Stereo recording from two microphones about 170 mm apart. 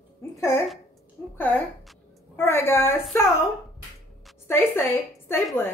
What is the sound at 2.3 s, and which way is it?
A woman's voice, 15° left (ahead or behind).